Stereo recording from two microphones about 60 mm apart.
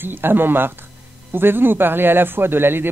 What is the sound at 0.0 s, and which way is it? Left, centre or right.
A man's voice, right.